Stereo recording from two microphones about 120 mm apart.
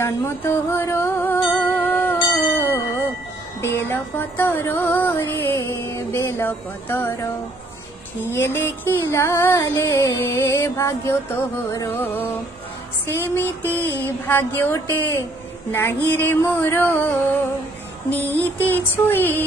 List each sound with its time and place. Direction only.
0.0 s music: 20° left (ahead or behind)
2.5 s ding: 15° left (ahead or behind)
3.6 s music: 20° left (ahead or behind)